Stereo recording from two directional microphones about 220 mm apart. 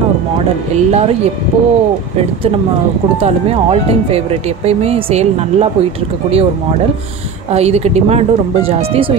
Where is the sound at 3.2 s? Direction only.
25° right (ahead or behind).